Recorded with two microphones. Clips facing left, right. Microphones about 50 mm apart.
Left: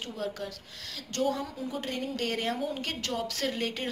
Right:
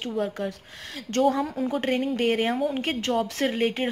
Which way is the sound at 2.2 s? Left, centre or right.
Right.